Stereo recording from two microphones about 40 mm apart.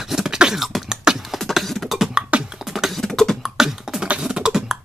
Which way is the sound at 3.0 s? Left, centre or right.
Centre.